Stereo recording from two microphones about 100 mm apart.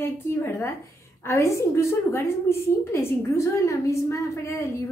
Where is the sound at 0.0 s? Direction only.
20° left (ahead or behind).